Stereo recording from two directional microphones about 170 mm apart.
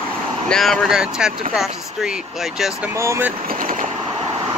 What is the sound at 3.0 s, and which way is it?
Speech, 15° right (ahead or behind).